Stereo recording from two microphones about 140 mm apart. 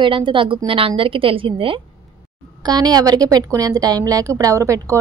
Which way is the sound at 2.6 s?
30° right (ahead or behind).